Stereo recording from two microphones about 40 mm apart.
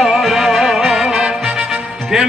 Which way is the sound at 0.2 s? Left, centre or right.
Centre.